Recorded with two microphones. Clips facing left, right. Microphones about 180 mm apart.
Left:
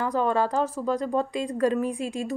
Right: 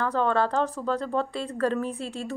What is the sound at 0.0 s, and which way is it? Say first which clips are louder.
A woman's voice: even; 10° left (ahead or behind).